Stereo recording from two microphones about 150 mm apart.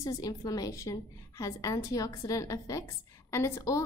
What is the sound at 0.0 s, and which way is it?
A woman's voice, 25° left (ahead or behind).